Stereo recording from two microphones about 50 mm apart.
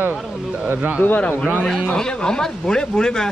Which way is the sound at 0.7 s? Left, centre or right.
Right.